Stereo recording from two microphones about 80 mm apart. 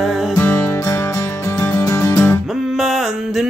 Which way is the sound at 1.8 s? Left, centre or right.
Left.